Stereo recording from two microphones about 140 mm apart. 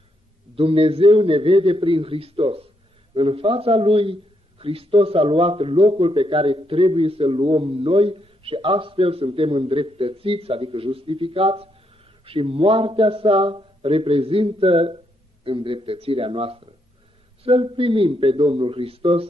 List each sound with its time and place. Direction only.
0.6 s a man's voice: 40° right (ahead or behind)